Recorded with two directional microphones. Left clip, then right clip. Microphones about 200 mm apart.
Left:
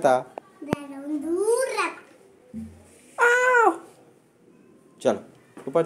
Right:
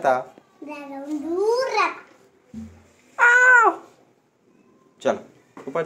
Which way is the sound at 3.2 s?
65° left (ahead or behind).